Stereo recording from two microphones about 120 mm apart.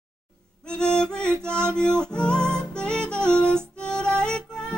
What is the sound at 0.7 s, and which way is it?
Music, 5° left (ahead or behind).